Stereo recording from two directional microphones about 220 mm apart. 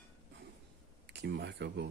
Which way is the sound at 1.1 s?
50° right (ahead or behind).